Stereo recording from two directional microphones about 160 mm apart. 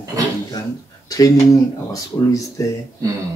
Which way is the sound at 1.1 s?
20° left (ahead or behind).